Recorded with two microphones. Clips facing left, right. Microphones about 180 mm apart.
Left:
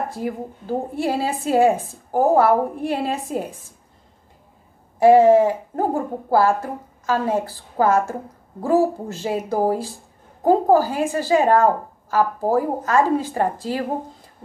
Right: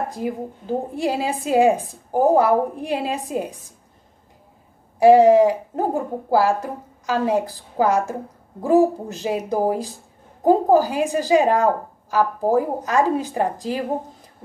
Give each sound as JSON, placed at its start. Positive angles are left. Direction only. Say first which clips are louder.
{"t": 0.1, "sound": "a woman's voice", "louder": "right 1 dB", "side_deg": -15}
{"t": 4.9, "sound": "a woman's voice", "louder": "even", "side_deg": -15}